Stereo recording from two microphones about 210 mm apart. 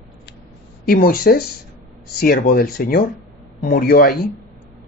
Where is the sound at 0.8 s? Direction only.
45° left (ahead or behind).